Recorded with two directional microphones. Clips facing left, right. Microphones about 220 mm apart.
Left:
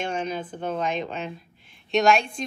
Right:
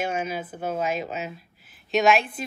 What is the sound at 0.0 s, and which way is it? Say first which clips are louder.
Speech: even; 5° right (ahead or behind).